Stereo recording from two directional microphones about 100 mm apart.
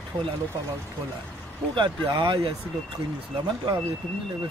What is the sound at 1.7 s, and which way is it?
Speech, 55° right (ahead or behind).